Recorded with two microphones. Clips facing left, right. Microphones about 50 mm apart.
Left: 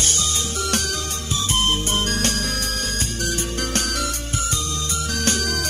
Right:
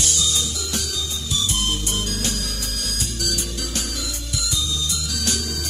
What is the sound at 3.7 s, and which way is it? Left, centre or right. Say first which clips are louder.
Music: left 5 dB; left.